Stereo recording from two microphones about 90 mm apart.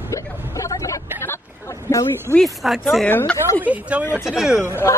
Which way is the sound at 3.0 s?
15° left (ahead or behind).